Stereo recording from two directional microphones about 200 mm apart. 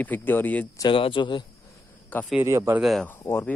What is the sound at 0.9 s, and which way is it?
Speech, 25° left (ahead or behind).